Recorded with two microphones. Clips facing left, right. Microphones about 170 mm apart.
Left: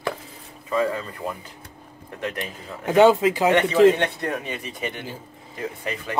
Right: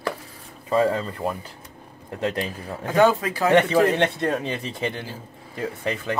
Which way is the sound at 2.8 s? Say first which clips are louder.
Left 3 dB; 20° left (ahead or behind).